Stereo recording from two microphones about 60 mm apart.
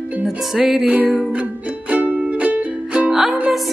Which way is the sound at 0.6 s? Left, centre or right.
Centre.